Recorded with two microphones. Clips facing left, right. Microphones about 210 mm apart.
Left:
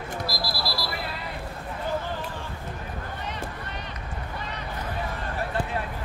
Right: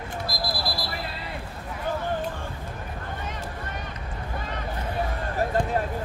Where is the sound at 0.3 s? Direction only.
50° right (ahead or behind).